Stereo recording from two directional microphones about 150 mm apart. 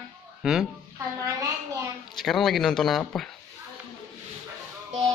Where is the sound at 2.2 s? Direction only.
Centre (ahead or behind).